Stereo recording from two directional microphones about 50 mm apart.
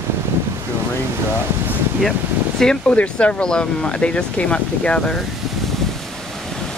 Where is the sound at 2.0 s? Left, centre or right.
Centre.